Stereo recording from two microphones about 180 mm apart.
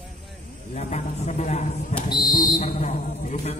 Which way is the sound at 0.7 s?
40° left (ahead or behind).